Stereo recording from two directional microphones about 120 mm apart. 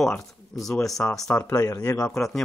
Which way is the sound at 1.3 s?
25° left (ahead or behind).